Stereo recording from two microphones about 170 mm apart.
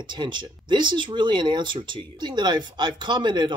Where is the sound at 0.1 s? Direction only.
25° right (ahead or behind).